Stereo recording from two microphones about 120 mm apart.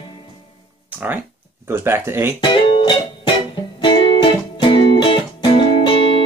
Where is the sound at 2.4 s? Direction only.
45° left (ahead or behind).